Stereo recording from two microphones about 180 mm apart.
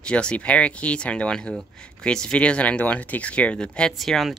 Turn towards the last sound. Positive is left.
turn(degrees=0)  # may be behind; listen again after turning